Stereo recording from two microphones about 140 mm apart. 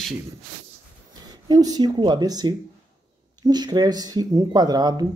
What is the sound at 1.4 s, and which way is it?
Speech, 25° right (ahead or behind).